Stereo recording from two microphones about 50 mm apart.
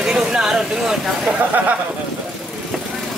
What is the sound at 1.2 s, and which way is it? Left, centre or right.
Speech, right.